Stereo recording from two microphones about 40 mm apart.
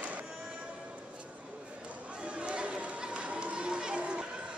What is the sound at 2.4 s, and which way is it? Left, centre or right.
Chatter, right.